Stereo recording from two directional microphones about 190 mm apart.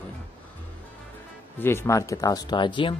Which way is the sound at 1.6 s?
15° left (ahead or behind).